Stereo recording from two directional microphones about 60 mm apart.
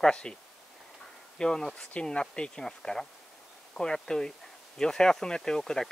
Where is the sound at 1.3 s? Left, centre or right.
Centre.